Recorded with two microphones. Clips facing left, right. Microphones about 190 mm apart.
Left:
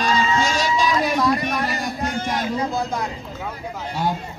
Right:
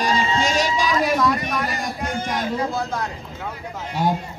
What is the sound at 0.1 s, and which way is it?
Music, 25° right (ahead or behind).